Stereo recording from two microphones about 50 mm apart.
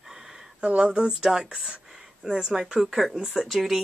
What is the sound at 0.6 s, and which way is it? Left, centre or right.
Speech, right.